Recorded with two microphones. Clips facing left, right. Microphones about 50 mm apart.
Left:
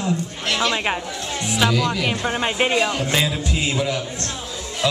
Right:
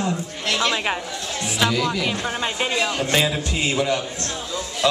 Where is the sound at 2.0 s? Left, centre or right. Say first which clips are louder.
Left 2 dB; centre.